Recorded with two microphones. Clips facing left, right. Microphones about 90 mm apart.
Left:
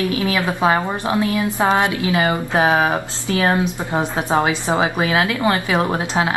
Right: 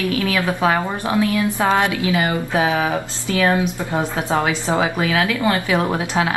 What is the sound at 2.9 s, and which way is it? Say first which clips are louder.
A woman's voice: even; 20° left (ahead or behind).